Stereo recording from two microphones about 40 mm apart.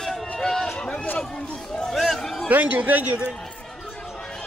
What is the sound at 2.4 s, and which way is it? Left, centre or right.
Speech, right.